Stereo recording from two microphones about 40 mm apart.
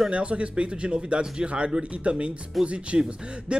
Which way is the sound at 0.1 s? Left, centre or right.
Right.